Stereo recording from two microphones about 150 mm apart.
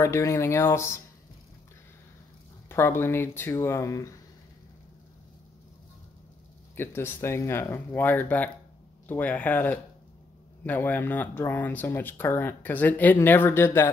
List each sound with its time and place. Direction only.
0.0 s speech: 20° left (ahead or behind)
2.7 s speech: 15° left (ahead or behind)
6.8 s speech: 15° left (ahead or behind)